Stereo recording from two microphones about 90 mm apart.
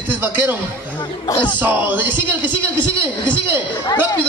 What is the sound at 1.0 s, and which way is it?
Speech, 55° left (ahead or behind).